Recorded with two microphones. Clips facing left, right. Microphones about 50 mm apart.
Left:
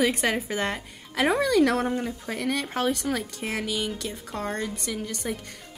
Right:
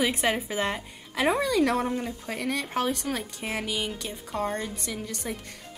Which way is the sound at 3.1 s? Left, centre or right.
Centre.